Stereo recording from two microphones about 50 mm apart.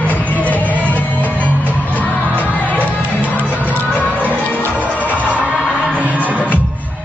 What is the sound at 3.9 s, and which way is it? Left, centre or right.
Music, left.